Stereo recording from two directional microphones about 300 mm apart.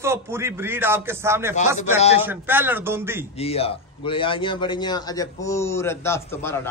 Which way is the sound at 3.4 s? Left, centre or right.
Centre.